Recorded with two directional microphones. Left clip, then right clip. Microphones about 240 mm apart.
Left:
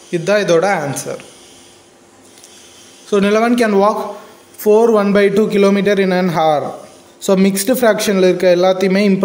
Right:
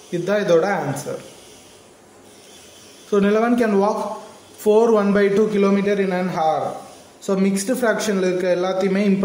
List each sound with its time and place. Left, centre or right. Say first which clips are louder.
0.1 s speech: left 4 dB; centre
3.1 s a man's voice: left 4 dB; centre
4.9 s a man's voice: left 4 dB; left